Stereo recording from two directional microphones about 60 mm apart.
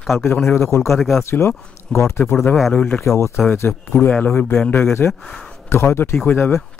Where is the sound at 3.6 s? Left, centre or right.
Left.